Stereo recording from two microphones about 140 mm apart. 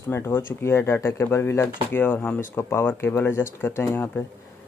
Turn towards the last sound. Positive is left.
turn(degrees=15)  # may be behind; listen again after turning